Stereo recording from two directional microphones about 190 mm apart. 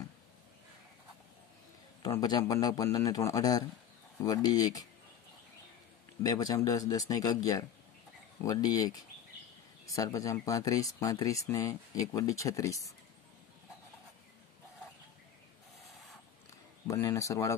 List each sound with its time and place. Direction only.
2.0 s a man's voice: 20° left (ahead or behind)
6.2 s a man's voice: 20° left (ahead or behind)
9.9 s speech: 15° left (ahead or behind)
16.8 s speech: 15° left (ahead or behind)